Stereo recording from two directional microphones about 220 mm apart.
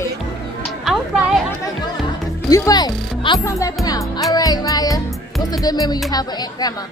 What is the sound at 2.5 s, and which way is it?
Music, 15° left (ahead or behind).